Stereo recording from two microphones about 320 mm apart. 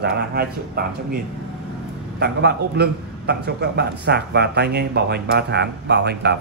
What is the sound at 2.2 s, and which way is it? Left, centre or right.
A man's voice, right.